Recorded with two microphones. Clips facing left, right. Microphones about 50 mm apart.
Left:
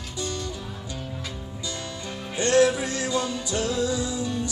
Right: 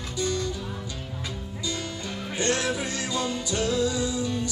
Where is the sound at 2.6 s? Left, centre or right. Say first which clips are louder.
Left 7 dB; left.